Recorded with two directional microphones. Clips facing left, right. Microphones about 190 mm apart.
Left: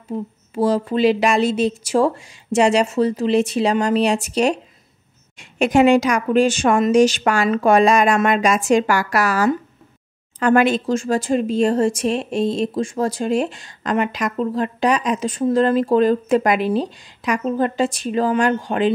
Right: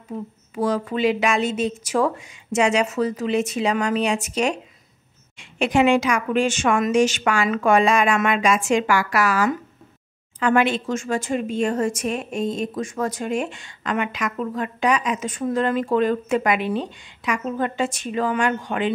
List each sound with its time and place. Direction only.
0.1 s speech: 30° left (ahead or behind)